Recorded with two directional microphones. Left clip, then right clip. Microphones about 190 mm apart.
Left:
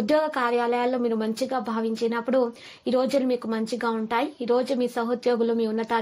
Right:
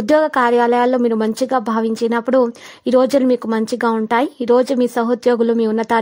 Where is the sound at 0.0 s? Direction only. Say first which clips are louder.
Right 9 dB; 45° right (ahead or behind).